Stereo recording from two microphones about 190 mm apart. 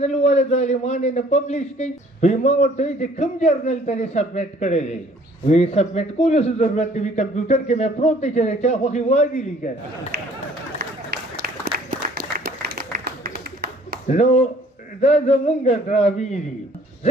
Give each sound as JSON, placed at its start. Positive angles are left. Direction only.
{"t": 0.0, "sound": "a man's voice", "side_deg": 35}
{"t": 10.8, "sound": "run", "side_deg": -55}
{"t": 12.4, "sound": "a sound", "side_deg": -55}
{"t": 14.0, "sound": "a man's voice", "side_deg": 40}